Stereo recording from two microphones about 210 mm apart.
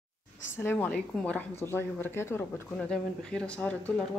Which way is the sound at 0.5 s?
10° left (ahead or behind).